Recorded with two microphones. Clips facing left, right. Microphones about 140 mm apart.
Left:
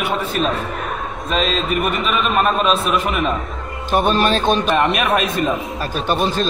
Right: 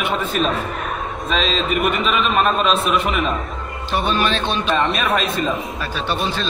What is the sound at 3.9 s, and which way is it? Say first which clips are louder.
Speech: left 4 dB; 45° left (ahead or behind).